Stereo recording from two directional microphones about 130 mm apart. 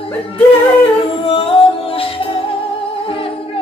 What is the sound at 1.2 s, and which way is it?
Music, 45° left (ahead or behind).